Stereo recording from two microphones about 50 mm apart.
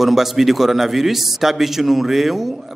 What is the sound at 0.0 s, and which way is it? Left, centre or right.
A man's voice, centre.